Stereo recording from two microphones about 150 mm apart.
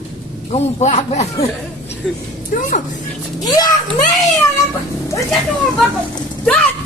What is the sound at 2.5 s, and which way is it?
Speech, 65° left (ahead or behind).